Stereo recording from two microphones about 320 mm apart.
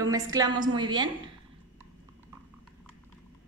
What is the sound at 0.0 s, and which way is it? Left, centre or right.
A woman's voice, centre.